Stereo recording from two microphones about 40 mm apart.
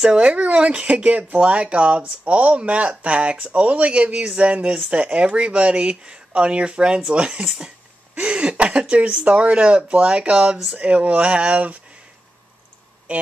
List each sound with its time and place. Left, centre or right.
0.0 s speech: right
8.1 s speech: right